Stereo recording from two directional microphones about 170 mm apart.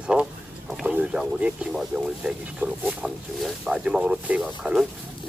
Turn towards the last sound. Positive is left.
turn(degrees=-5)  # may be behind; listen again after turning